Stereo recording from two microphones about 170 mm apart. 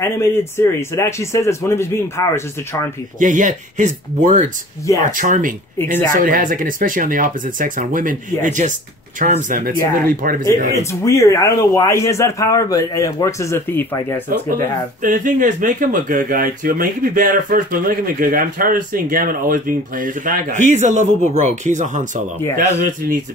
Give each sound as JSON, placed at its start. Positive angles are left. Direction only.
{"t": 0.0, "sound": "speech", "side_deg": 15}
{"t": 3.2, "sound": "speech", "side_deg": -50}
{"t": 5.8, "sound": "speech", "side_deg": 15}
{"t": 6.1, "sound": "speech", "side_deg": -55}
{"t": 10.7, "sound": "speech", "side_deg": 15}
{"t": 15.0, "sound": "speech", "side_deg": -50}
{"t": 22.4, "sound": "speech", "side_deg": 15}